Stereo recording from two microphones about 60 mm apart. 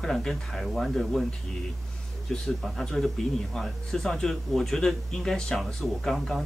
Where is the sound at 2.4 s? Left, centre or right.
Centre.